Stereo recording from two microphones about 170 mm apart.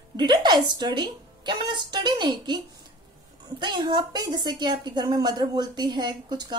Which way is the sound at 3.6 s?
30° right (ahead or behind).